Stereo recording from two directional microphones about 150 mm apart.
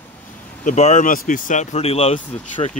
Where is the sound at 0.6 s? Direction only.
50° left (ahead or behind).